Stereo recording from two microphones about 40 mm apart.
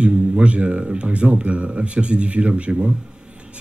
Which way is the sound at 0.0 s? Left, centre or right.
Right.